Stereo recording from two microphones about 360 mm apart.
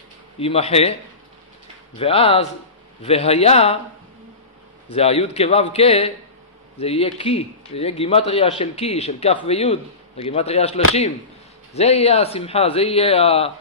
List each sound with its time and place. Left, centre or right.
0.4 s a man's voice: centre
2.0 s a man's voice: centre
4.9 s a man's voice: centre